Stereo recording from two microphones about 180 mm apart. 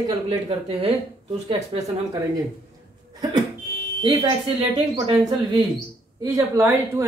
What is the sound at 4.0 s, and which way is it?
Speech, 25° right (ahead or behind).